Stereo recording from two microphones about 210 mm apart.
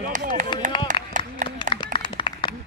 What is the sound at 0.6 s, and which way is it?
Clapping, 40° right (ahead or behind).